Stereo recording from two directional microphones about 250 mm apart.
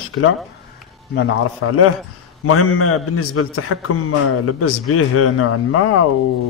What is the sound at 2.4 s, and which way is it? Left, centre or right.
A man's voice, left.